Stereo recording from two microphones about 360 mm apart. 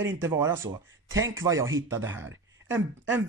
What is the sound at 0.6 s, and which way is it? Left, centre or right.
Speech, right.